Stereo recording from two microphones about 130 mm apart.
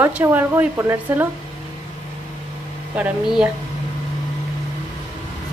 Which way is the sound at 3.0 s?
10° right (ahead or behind).